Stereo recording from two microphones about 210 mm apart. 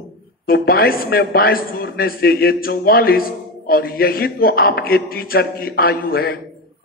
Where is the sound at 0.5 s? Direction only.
45° left (ahead or behind).